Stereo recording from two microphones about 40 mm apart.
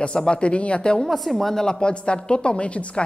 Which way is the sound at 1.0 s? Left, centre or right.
Centre.